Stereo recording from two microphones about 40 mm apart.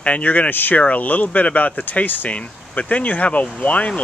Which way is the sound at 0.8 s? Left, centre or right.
Left.